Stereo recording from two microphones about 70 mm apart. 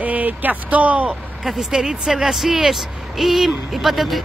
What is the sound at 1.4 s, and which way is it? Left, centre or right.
Speech, centre.